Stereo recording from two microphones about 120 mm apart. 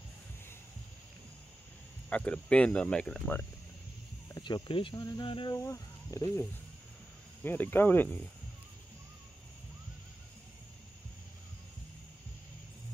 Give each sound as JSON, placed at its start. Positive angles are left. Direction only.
{"t": 2.0, "sound": "speech", "side_deg": 10}
{"t": 4.6, "sound": "speech", "side_deg": 45}
{"t": 5.0, "sound": "insect", "side_deg": 35}
{"t": 5.5, "sound": "speech", "side_deg": 25}
{"t": 7.4, "sound": "speech", "side_deg": 15}